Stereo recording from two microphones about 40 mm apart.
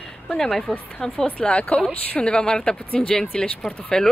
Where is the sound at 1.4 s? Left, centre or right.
Centre.